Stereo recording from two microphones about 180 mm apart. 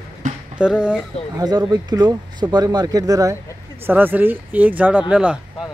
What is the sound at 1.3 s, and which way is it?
Speech, 20° right (ahead or behind).